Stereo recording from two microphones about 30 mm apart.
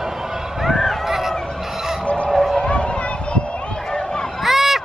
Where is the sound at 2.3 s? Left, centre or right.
Centre.